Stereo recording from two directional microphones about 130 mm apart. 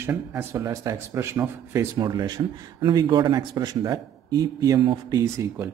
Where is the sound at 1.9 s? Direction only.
30° right (ahead or behind).